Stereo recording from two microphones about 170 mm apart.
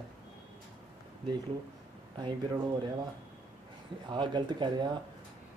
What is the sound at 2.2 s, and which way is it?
Speech, 30° right (ahead or behind).